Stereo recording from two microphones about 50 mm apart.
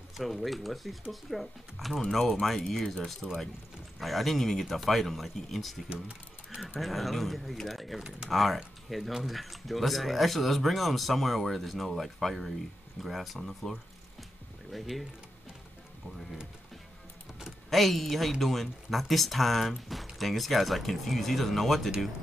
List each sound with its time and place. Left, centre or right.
0.2 s speech: centre
5.9 s typing: right
6.6 s speech: centre
17.6 s speech: centre